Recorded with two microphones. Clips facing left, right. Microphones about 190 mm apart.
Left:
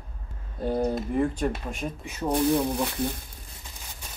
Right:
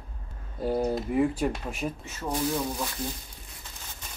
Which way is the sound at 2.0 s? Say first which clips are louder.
Left 9 dB; 15° left (ahead or behind).